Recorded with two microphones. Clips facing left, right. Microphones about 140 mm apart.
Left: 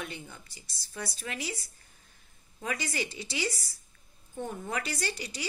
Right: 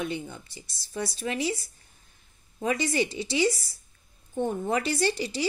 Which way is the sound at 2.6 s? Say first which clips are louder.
Right 8 dB; 25° right (ahead or behind).